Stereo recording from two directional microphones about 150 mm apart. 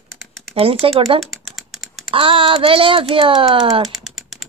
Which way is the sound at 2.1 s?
35° right (ahead or behind).